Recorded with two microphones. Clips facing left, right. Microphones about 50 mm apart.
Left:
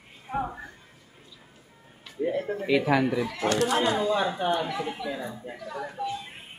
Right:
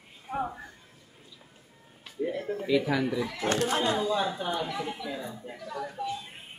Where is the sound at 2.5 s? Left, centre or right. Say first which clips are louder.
Left 3 dB; left.